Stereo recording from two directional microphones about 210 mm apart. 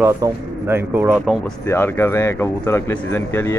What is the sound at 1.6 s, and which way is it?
Speech, 10° left (ahead or behind).